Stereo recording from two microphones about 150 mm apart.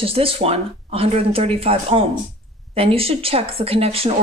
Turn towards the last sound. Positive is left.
turn(degrees=-40)  # may be behind; listen again after turning